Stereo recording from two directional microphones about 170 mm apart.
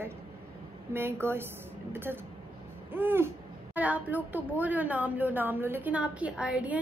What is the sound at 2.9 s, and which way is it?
Speech, 10° right (ahead or behind).